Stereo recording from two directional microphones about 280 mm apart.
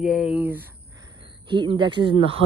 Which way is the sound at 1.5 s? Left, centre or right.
Centre.